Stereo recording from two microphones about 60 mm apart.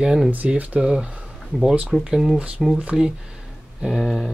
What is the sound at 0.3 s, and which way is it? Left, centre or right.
Speech, right.